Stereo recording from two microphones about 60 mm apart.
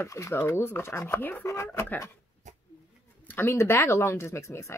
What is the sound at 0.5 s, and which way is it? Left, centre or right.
Speech, left.